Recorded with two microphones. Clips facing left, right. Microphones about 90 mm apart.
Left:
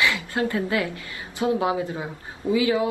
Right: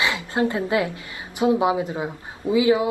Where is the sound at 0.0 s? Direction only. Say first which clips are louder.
Right 2 dB; 20° right (ahead or behind).